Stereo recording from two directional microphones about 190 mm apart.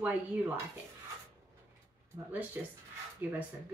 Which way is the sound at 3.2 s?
10° right (ahead or behind).